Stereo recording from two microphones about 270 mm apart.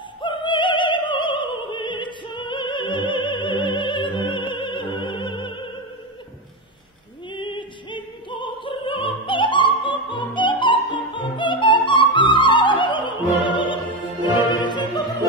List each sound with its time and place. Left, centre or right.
0.2 s opera: centre
7.3 s opera: centre
14.3 s music: centre